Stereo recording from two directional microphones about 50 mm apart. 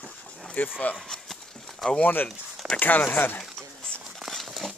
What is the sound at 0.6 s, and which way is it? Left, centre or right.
Speech, left.